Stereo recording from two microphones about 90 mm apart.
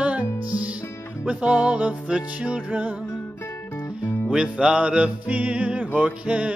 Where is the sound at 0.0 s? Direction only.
15° right (ahead or behind).